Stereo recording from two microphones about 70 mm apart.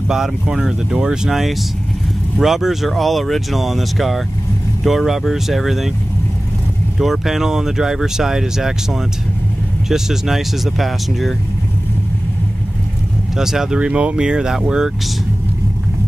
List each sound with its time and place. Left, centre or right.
0.1 s speech: centre
7.0 s speech: centre
13.4 s speech: centre